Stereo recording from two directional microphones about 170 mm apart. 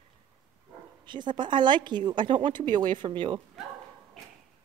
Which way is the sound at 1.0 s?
25° right (ahead or behind).